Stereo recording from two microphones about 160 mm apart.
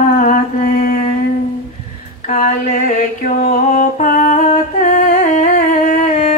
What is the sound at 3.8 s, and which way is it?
Music, 55° left (ahead or behind).